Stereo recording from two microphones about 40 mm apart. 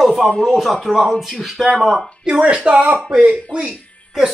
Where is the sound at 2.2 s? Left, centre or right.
Right.